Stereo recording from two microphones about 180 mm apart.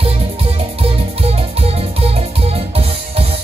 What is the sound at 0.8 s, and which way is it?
Music, 35° right (ahead or behind).